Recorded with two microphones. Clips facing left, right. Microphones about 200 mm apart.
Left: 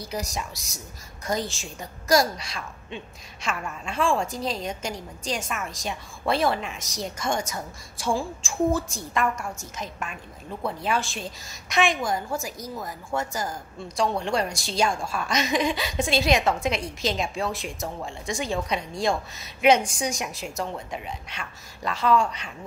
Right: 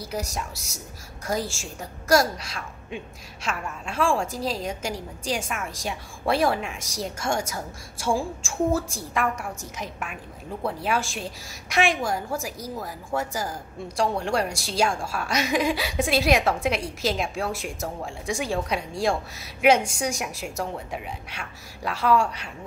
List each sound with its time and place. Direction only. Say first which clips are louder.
0.1 s a woman's voice: even; 5° right (ahead or behind)
10.8 s a woman's voice: left 1 dB; 10° right (ahead or behind)